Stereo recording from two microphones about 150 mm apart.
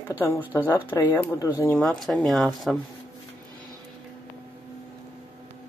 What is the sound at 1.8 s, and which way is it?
Speech, centre (ahead or behind).